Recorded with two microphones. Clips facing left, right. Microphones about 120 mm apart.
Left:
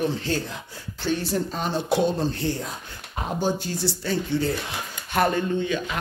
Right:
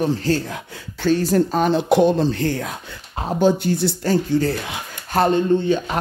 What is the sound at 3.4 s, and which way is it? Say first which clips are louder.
Speech: right 10 dB; 65° right (ahead or behind).